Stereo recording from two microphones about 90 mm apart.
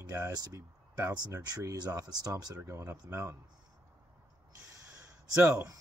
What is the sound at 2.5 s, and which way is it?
Speech, 30° right (ahead or behind).